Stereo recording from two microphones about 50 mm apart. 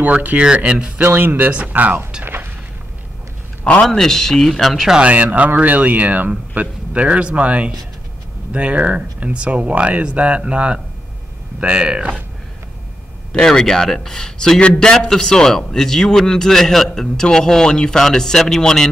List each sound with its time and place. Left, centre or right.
0.0 s speech: right
1.0 s speech: right
1.5 s speech: right
2.2 s a sound: right
3.8 s speech: centre
4.9 s speech: right
13.3 s a man's voice: centre